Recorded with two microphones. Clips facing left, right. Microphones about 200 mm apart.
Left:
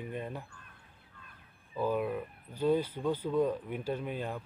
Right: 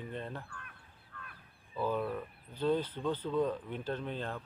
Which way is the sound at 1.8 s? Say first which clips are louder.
Left 2 dB; 10° left (ahead or behind).